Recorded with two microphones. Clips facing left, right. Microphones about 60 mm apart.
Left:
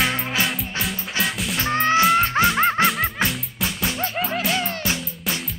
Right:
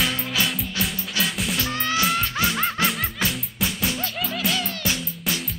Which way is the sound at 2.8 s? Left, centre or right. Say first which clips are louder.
Left 4 dB; centre.